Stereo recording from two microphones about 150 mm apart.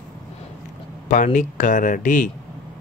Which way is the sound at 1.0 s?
60° left (ahead or behind).